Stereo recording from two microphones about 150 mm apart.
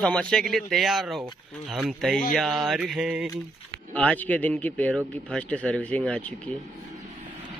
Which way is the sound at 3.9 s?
10° left (ahead or behind).